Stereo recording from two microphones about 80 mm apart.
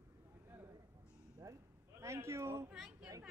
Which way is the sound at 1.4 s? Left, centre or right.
Right.